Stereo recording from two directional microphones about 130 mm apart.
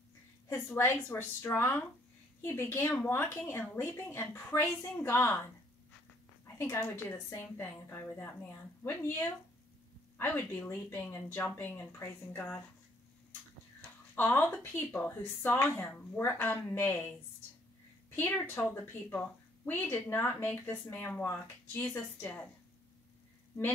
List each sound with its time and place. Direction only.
0.7 s a woman's voice: 20° left (ahead or behind)
6.4 s a woman's voice: 20° left (ahead or behind)
14.1 s a woman's voice: 15° left (ahead or behind)
18.1 s a woman's voice: 15° left (ahead or behind)